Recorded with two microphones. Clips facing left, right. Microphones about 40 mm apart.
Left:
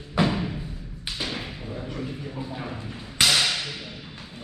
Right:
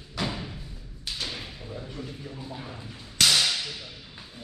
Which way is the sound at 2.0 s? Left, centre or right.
Left.